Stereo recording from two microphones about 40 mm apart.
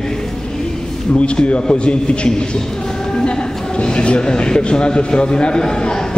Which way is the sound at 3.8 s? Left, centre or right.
Left.